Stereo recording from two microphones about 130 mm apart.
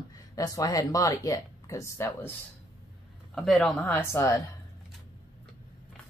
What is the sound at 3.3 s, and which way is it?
Speech, centre (ahead or behind).